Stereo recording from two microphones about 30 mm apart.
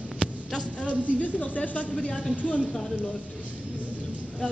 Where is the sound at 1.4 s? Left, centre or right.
Left.